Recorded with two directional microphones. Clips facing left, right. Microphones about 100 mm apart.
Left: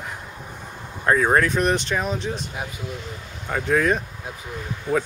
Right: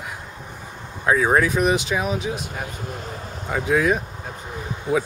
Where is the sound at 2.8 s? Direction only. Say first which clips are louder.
Right 1 dB; 45° right (ahead or behind).